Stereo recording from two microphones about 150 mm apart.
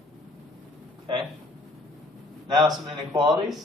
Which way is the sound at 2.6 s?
30° right (ahead or behind).